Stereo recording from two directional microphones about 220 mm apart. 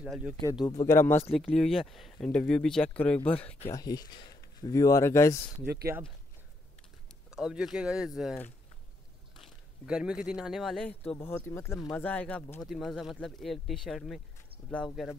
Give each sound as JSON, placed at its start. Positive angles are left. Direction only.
{"t": 0.0, "sound": "speech", "side_deg": -5}
{"t": 0.5, "sound": "speech", "side_deg": 15}
{"t": 3.7, "sound": "speech", "side_deg": 15}
{"t": 7.2, "sound": "speech", "side_deg": -5}